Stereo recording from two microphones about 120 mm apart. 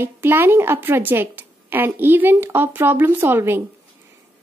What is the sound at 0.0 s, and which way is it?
A woman's voice, 20° right (ahead or behind).